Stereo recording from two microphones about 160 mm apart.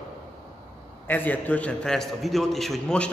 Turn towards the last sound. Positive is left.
turn(degrees=5)  # may be behind; listen again after turning